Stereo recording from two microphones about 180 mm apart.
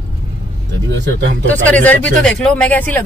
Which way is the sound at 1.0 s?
70° right (ahead or behind).